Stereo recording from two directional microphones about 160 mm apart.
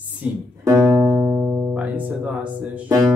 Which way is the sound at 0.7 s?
15° right (ahead or behind).